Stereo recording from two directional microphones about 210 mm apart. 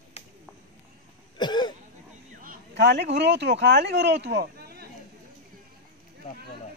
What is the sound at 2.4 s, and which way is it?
Speech, 55° right (ahead or behind).